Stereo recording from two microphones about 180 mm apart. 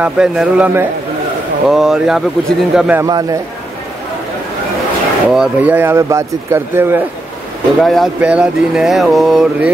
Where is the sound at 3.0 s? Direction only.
20° right (ahead or behind).